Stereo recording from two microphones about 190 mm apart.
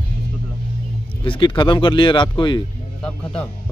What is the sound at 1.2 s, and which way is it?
Speech, 25° left (ahead or behind).